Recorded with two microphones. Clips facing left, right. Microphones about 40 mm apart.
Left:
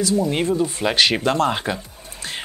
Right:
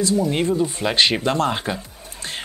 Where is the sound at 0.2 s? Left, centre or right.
Centre.